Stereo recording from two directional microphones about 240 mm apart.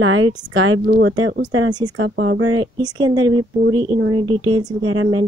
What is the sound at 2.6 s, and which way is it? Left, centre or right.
Speech, centre.